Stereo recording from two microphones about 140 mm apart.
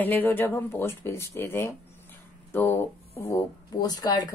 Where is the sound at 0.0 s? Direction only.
15° left (ahead or behind).